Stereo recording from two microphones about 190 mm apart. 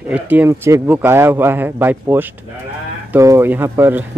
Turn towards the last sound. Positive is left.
turn(degrees=-10)  # may be behind; listen again after turning